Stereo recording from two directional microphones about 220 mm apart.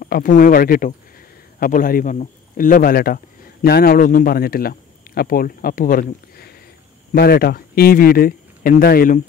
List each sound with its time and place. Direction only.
0.0 s a man's voice: 40° left (ahead or behind)